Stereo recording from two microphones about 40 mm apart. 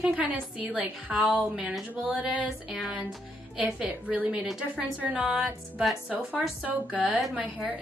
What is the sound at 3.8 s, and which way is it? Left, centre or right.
Speech, right.